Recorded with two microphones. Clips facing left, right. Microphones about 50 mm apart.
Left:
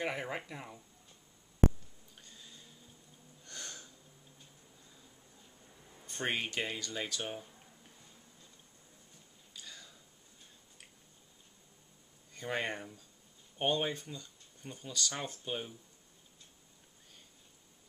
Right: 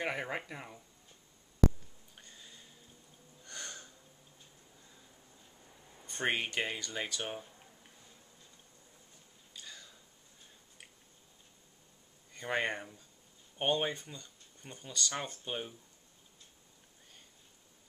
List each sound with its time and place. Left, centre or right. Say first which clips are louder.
0.0 s speech: right 1 dB; centre
2.1 s a sound: right 1 dB; centre
6.0 s speech: right 2 dB; centre
12.4 s speech: right 2 dB; centre